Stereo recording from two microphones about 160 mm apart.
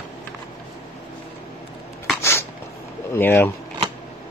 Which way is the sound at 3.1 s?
15° left (ahead or behind).